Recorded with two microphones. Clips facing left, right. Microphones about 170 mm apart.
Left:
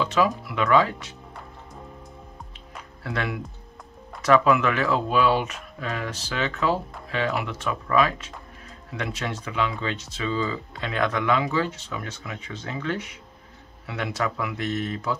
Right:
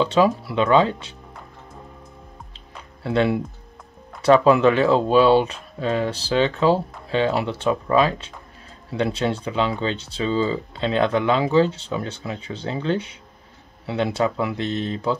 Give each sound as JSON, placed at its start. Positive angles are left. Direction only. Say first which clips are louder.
{"t": 0.0, "sound": "speech", "louder": "right 5 dB", "side_deg": -30}
{"t": 3.0, "sound": "speech", "louder": "right 9 dB", "side_deg": -25}